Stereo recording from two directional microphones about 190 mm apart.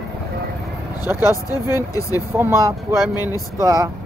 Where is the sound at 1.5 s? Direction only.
20° left (ahead or behind).